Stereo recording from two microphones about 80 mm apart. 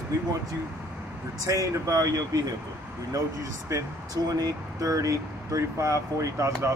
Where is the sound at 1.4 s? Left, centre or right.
Right.